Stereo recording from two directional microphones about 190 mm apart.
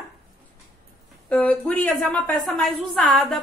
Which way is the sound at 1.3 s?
5° left (ahead or behind).